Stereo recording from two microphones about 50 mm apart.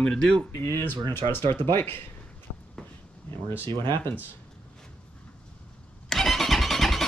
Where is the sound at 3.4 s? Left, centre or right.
Left.